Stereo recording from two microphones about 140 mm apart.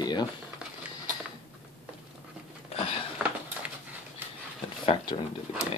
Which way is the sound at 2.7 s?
45° left (ahead or behind).